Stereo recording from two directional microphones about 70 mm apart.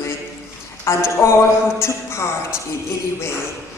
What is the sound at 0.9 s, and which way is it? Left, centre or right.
Speech, left.